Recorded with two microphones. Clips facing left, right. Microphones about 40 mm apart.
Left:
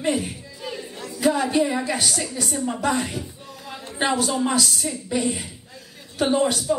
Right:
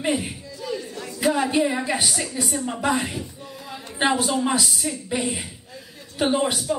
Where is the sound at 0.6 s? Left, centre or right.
Left.